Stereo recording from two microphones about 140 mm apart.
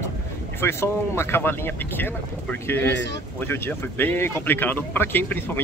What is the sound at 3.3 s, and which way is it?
Speech, 15° left (ahead or behind).